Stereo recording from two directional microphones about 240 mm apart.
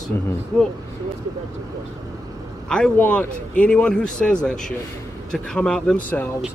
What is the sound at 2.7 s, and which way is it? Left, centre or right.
Speech, centre.